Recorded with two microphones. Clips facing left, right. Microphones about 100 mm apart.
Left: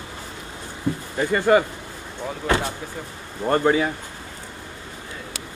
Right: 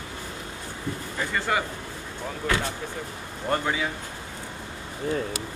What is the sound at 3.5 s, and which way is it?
Speech, 45° left (ahead or behind).